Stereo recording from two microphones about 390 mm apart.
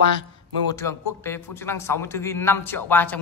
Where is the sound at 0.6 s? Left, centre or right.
Centre.